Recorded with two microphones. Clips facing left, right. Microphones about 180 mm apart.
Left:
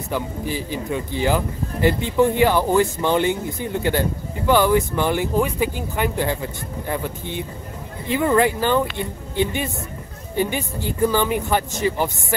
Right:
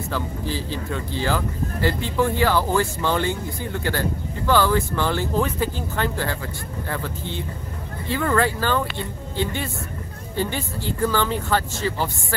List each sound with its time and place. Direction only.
0.1 s speech: 15° left (ahead or behind)